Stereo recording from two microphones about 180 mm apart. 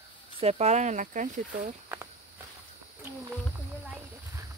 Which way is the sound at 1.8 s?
15° right (ahead or behind).